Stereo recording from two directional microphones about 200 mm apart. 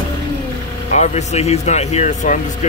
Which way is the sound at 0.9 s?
35° left (ahead or behind).